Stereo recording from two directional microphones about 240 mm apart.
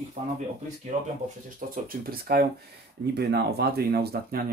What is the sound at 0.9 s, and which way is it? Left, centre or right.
Speech, right.